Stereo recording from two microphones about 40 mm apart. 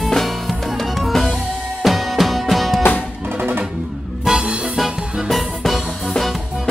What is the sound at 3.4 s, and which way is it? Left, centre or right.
Music, right.